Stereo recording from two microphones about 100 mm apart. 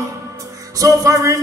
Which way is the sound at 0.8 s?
35° right (ahead or behind).